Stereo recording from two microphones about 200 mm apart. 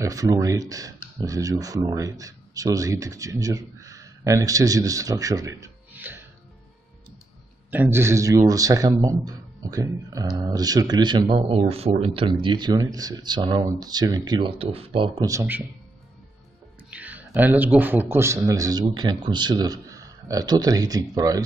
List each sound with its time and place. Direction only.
0.0 s speech: 15° right (ahead or behind)
7.7 s a man's voice: 10° right (ahead or behind); by 15.2 s 30° right (ahead or behind)
15.2 s a man's voice: 10° right (ahead or behind)
16.9 s a man's voice: 10° right (ahead or behind)